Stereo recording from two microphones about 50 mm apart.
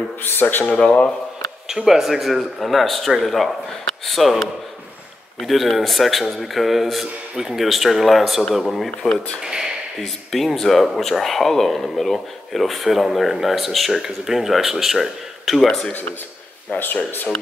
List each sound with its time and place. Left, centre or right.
0.2 s speech: left
0.7 s speech: centre
1.7 s speech: centre
5.5 s speech: centre
9.9 s speech: centre
15.9 s speech: left